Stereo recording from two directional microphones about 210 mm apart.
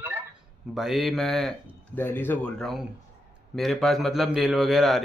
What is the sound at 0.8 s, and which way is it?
A man's voice, centre (ahead or behind).